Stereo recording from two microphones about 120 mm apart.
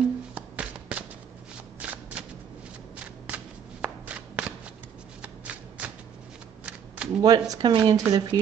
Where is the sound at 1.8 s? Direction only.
10° right (ahead or behind).